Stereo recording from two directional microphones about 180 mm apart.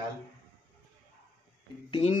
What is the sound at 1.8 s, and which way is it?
Speech, 30° left (ahead or behind).